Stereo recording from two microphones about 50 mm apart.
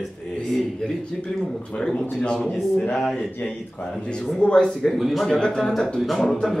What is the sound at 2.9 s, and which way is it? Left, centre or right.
Speech, centre.